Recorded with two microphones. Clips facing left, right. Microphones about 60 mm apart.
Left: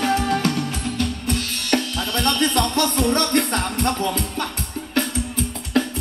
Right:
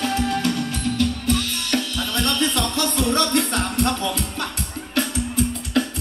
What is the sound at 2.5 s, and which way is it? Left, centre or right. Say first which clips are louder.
Music: left 3 dB; left.